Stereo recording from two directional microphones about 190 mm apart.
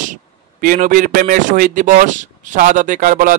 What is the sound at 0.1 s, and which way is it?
Speech, 45° right (ahead or behind).